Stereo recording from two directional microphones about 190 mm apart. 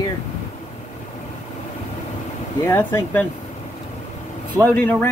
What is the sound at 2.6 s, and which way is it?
Speech, 10° left (ahead or behind).